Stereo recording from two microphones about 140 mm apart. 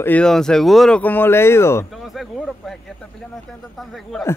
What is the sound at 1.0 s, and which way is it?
Speech, 15° left (ahead or behind).